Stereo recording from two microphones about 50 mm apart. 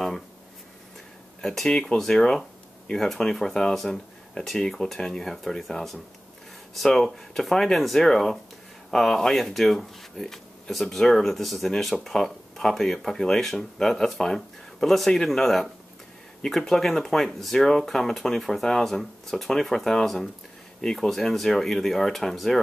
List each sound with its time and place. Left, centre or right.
1.4 s speech: centre
1.7 s speech: centre
7.0 s speech: centre